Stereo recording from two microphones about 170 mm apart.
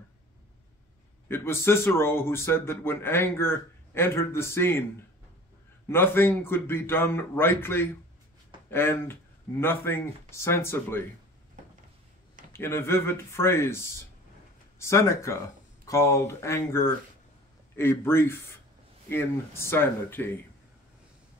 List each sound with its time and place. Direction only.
1.3 s a man's voice: 15° left (ahead or behind)
5.9 s a man's voice: 15° left (ahead or behind)
12.5 s a man's voice: 15° left (ahead or behind)